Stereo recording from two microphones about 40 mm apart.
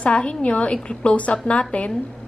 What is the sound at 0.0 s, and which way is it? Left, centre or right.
A woman's voice, left.